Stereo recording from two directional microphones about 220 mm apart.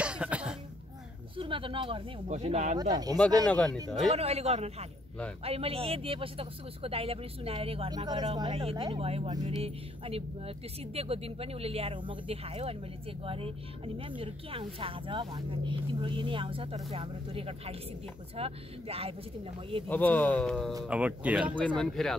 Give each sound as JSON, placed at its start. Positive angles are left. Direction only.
{"t": 0.0, "sound": "cough", "side_deg": -5}
{"t": 1.3, "sound": "speech", "side_deg": -25}
{"t": 3.4, "sound": "speech", "side_deg": 5}
{"t": 4.1, "sound": "speech", "side_deg": -30}
{"t": 19.9, "sound": "speech", "side_deg": 5}